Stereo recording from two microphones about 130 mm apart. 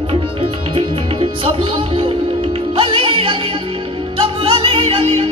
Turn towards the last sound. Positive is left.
turn(degrees=-50)  # may be behind; listen again after turning